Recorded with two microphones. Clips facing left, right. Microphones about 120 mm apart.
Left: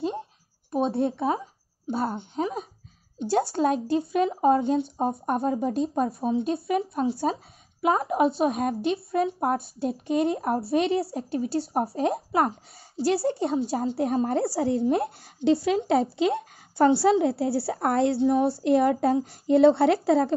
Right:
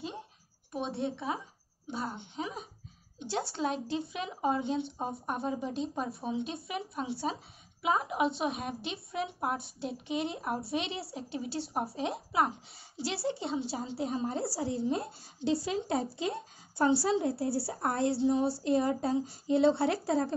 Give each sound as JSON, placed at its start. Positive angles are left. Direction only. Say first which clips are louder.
{"t": 0.7, "sound": "a woman's voice", "louder": "left 10 dB", "side_deg": 40}